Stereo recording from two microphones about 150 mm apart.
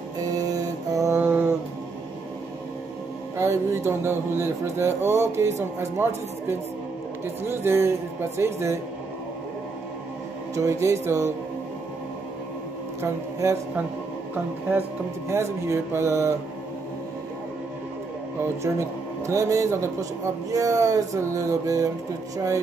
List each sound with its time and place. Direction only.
0.2 s mantra: 25° right (ahead or behind)
1.2 s music: 15° right (ahead or behind)
3.3 s speech: 20° right (ahead or behind)
10.5 s a man's voice: 20° right (ahead or behind)
13.0 s speech: 15° right (ahead or behind)
18.4 s a man's voice: 20° right (ahead or behind)